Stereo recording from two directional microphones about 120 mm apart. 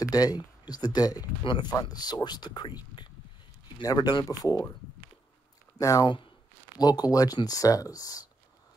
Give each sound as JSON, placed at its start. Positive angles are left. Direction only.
{"t": 0.0, "sound": "speech", "side_deg": 30}
{"t": 5.8, "sound": "speech", "side_deg": 30}